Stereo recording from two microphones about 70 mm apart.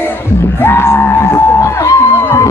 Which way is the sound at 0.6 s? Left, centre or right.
Left.